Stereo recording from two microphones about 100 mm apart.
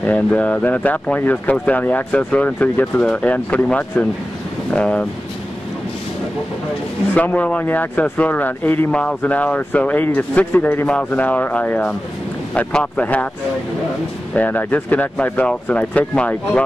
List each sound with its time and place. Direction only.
0.0 s speech: 10° left (ahead or behind)
7.2 s speech: 15° left (ahead or behind)
14.3 s speech: 15° left (ahead or behind)